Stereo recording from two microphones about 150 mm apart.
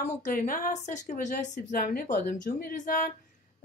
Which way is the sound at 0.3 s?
65° left (ahead or behind).